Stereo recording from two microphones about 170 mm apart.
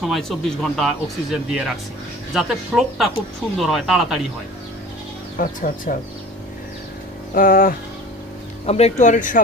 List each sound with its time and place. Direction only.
0.0 s speech: centre (ahead or behind)
5.4 s speech: 50° left (ahead or behind)
7.3 s a sound: 55° left (ahead or behind)
8.6 s speech: 40° left (ahead or behind)